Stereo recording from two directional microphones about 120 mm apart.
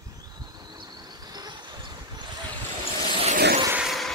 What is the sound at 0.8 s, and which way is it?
Vehicle, 35° right (ahead or behind).